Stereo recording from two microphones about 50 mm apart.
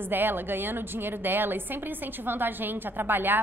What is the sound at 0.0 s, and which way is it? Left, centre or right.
A woman's voice, right.